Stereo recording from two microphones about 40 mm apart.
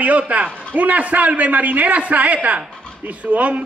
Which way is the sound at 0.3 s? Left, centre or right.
Right.